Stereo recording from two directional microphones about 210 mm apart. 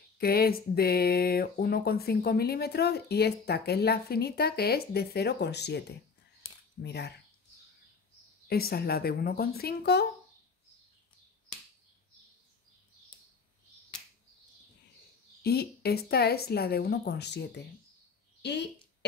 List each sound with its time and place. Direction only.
0.2 s speech: 45° left (ahead or behind)
8.5 s speech: 45° left (ahead or behind)
15.4 s speech: 50° left (ahead or behind)